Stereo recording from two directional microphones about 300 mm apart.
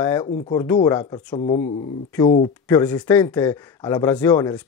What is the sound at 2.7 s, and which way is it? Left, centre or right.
Speech, centre.